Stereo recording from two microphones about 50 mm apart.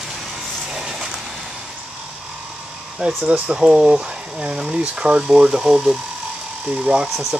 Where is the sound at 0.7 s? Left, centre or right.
Centre.